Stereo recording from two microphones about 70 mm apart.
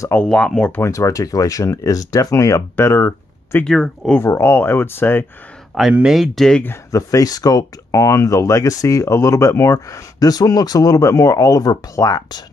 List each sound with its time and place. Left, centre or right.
0.2 s speech: centre
0.7 s speech: left
2.8 s speech: left
3.6 s speech: centre
4.2 s speech: left
5.7 s speech: centre
6.9 s speech: left